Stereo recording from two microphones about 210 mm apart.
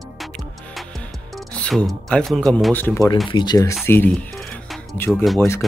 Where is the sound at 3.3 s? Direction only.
20° left (ahead or behind).